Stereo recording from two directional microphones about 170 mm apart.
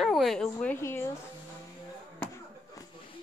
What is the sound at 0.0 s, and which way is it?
A woman's voice, centre (ahead or behind).